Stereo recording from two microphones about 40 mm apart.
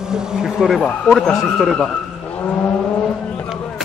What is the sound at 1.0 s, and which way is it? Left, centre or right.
Speech, centre.